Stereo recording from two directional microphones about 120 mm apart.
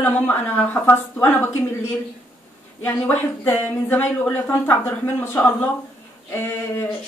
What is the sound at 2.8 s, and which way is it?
Speech, 15° left (ahead or behind).